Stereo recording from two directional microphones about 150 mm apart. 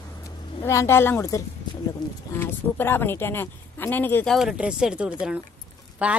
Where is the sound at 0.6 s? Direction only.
20° left (ahead or behind).